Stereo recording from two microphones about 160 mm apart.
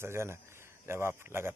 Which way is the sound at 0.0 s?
15° right (ahead or behind).